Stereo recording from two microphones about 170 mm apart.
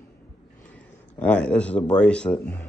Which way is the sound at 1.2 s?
5° left (ahead or behind).